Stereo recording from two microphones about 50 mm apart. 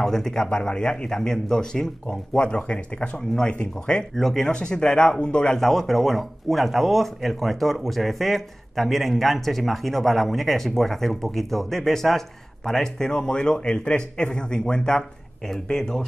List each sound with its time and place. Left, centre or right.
0.0 s speech: centre
4.1 s speech: centre
4.5 s speech: centre
5.6 s speech: centre